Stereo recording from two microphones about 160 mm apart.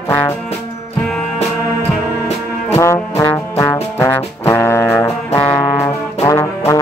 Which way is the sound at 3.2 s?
20° left (ahead or behind).